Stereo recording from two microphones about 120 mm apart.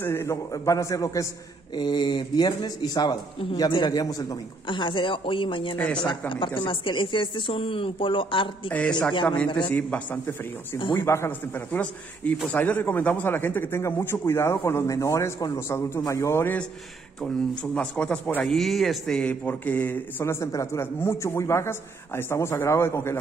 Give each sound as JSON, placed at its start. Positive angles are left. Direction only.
{"t": 0.0, "sound": "speech", "side_deg": 20}
{"t": 1.8, "sound": "speech", "side_deg": 35}
{"t": 8.6, "sound": "a man's voice", "side_deg": 10}
{"t": 17.7, "sound": "a man's voice", "side_deg": 10}